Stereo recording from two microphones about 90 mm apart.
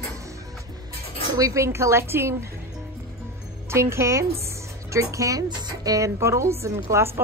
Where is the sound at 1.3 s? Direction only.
35° right (ahead or behind).